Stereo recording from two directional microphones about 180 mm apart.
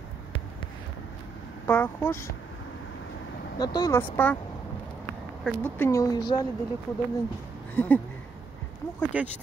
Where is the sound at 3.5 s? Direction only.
20° left (ahead or behind).